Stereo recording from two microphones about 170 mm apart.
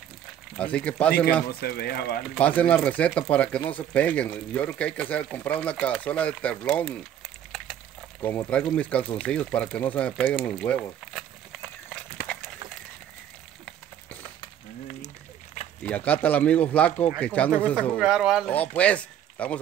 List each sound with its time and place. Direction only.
0.6 s speech: 5° left (ahead or behind)
1.5 s speech: 65° left (ahead or behind)
2.3 s speech: 10° left (ahead or behind)
8.2 s speech: 10° left (ahead or behind)
15.8 s speech: 10° left (ahead or behind)
17.7 s speech: 5° right (ahead or behind)
18.8 s speech: 10° left (ahead or behind)